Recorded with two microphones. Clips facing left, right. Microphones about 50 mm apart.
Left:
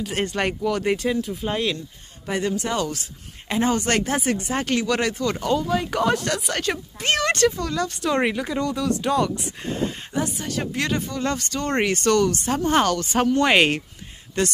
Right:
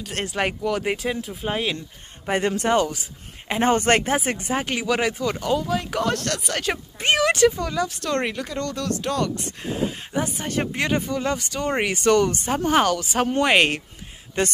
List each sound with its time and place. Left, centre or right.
0.0 s speech: centre
2.2 s speech: right
2.9 s a sound: centre
3.5 s speech: right
4.1 s speech: right
7.9 s speech: centre
10.1 s speech: right
10.8 s speech: centre
12.6 s speech: centre
14.4 s speech: right